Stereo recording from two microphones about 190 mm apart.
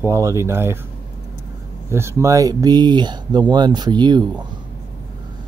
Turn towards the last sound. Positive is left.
turn(degrees=-25)  # may be behind; listen again after turning